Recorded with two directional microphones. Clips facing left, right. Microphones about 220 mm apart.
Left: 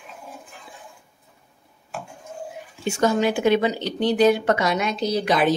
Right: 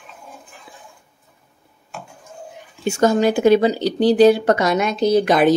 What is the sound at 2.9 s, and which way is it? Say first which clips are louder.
Speech: right 4 dB; 45° right (ahead or behind).